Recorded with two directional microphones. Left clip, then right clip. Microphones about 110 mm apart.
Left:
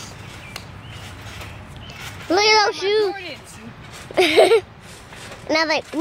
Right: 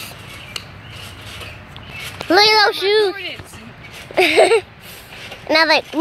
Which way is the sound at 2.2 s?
15° right (ahead or behind).